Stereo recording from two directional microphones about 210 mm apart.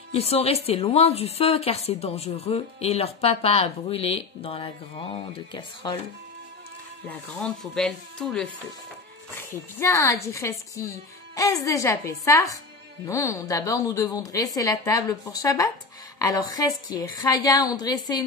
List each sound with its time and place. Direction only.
0.1 s speech: 30° left (ahead or behind)
7.1 s a woman's voice: 5° left (ahead or behind)